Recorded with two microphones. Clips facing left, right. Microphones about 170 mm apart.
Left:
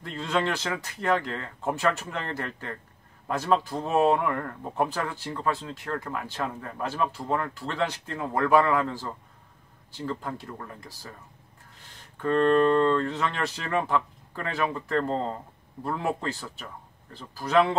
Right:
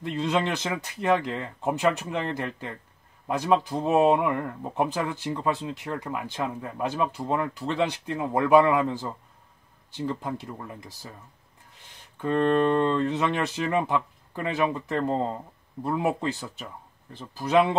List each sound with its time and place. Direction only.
0.0 s speech: 20° right (ahead or behind)
12.2 s speech: 15° right (ahead or behind)